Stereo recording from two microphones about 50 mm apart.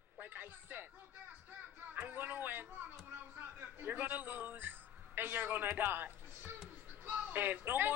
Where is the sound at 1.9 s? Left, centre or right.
Right.